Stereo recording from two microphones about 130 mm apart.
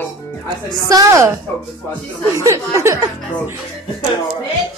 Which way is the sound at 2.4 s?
20° right (ahead or behind).